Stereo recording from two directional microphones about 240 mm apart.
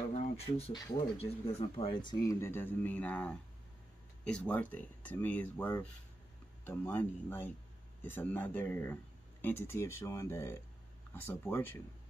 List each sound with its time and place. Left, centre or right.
0.1 s speech: left; by 11.8 s centre